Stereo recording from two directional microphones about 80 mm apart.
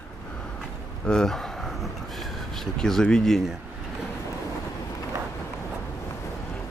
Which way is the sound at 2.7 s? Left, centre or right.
Centre.